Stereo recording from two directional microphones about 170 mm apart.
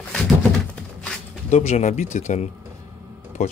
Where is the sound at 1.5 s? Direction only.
40° left (ahead or behind).